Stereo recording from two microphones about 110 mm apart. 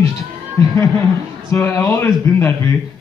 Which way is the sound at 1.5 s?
25° left (ahead or behind).